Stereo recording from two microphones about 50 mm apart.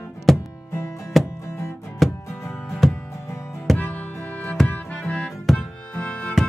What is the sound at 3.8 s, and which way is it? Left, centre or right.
Music, left.